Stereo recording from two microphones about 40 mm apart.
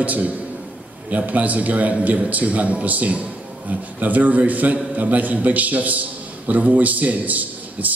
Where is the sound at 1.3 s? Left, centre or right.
Right.